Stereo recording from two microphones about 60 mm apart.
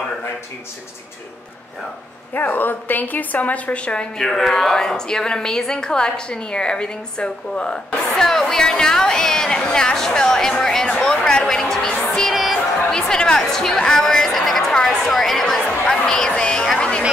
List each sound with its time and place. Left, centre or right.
2.3 s a woman's voice: left; by 17.0 s centre